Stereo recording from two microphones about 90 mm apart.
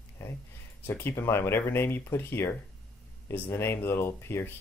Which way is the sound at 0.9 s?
25° left (ahead or behind).